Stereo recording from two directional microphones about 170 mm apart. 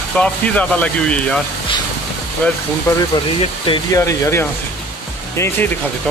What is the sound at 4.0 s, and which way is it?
Speech, 20° left (ahead or behind).